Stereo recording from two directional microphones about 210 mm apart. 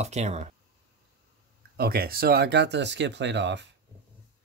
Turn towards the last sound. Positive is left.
turn(degrees=-55)  # may be behind; listen again after turning